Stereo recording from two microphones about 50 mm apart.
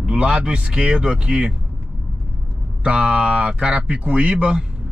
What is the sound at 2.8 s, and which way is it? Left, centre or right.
Speech, right.